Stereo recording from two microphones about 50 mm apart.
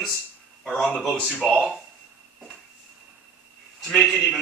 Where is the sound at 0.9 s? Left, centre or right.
Centre.